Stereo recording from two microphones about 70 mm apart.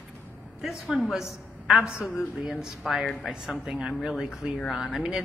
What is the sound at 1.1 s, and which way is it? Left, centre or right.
A woman's voice, centre.